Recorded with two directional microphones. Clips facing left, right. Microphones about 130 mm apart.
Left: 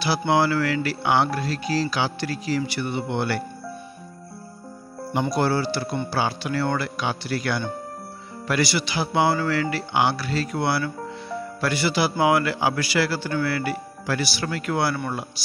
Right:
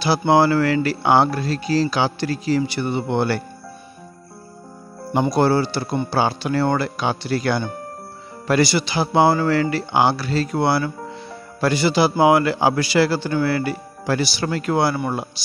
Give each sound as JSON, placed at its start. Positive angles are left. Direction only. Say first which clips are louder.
{"t": 0.3, "sound": "speech", "louder": "right 5 dB", "side_deg": -35}
{"t": 5.2, "sound": "a man's voice", "louder": "right 5 dB", "side_deg": -25}